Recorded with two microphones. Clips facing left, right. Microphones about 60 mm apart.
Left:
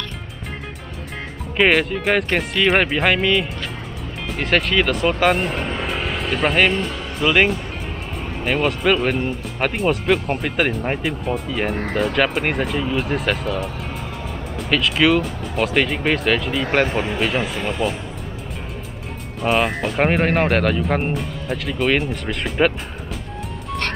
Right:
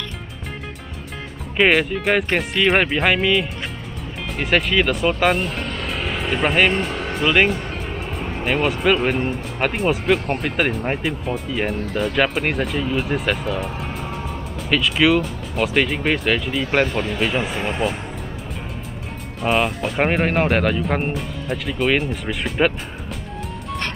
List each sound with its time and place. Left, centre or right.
1.6 s speech: centre
5.9 s vehicle: centre
7.2 s speech: centre
11.7 s speech: left
12.0 s speech: centre
14.7 s speech: centre
16.8 s speech: centre
17.2 s speech: centre
19.4 s speech: centre